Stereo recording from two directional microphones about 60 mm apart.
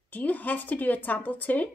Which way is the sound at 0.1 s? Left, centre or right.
Left.